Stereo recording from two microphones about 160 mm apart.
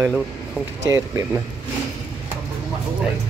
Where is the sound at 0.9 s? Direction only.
20° right (ahead or behind).